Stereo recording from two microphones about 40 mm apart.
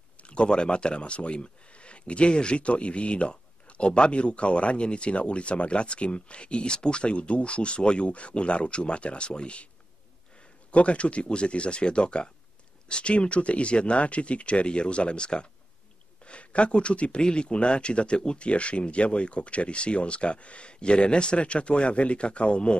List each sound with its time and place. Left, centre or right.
0.2 s speech: left
10.7 s speech: left